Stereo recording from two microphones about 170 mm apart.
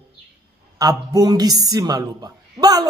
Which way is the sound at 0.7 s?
25° right (ahead or behind).